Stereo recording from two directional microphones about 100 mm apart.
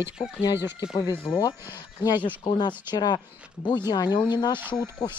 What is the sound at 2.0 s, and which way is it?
Speech, 45° left (ahead or behind).